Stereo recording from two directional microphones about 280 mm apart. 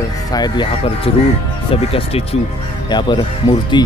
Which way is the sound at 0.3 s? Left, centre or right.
Centre.